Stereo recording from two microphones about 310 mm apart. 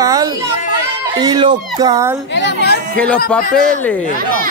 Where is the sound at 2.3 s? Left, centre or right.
Left.